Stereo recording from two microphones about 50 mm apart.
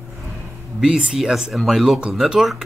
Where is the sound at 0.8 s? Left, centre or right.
Centre.